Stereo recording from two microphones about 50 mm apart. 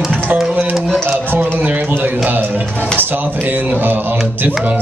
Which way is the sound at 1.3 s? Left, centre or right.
Right.